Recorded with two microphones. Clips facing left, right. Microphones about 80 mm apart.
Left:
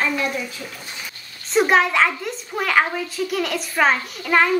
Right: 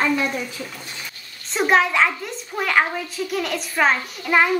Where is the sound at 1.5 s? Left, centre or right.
Centre.